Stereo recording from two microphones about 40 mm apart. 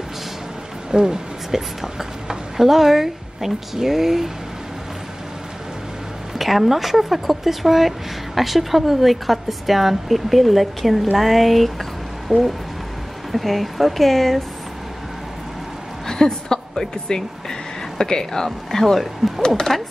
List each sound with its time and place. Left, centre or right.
0.9 s speech: centre
6.3 s a woman's voice: centre
16.1 s speech: centre
19.4 s speech: centre